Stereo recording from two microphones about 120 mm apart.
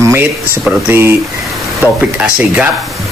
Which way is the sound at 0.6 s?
20° right (ahead or behind).